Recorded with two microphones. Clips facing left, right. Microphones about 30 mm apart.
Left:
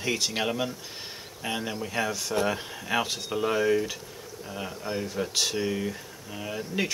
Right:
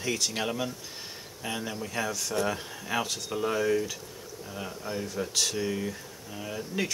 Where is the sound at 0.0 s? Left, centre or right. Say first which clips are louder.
Left 2 dB; centre.